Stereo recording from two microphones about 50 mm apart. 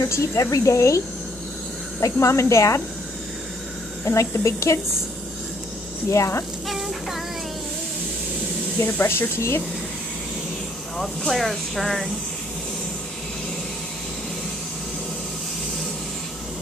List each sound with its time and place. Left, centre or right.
0.0 s a woman's voice: left
4.0 s speech: left
6.0 s a woman's voice: left
9.0 s speech: left
11.0 s speech: centre